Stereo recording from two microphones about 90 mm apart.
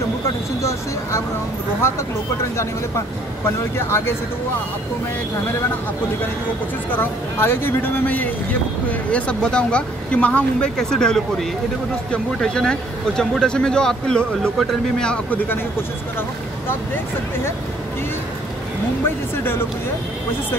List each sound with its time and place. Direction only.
0.6 s speech: 35° left (ahead or behind)
3.4 s speech: 30° left (ahead or behind)
6.9 s a man's voice: 25° left (ahead or behind); by 15.1 s 5° left (ahead or behind)
15.3 s speech: 25° left (ahead or behind)
19.0 s speech: 25° left (ahead or behind)